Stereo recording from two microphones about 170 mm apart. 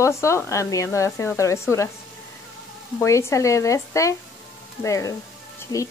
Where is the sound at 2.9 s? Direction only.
15° left (ahead or behind).